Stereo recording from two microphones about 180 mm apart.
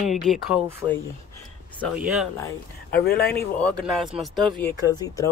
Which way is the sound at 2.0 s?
5° right (ahead or behind).